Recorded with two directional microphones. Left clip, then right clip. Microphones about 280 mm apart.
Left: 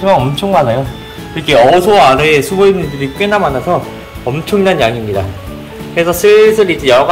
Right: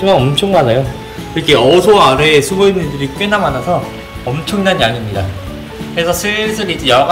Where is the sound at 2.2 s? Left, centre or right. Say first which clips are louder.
Left 1 dB; centre.